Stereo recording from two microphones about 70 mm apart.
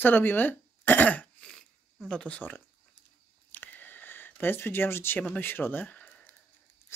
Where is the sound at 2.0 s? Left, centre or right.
Centre.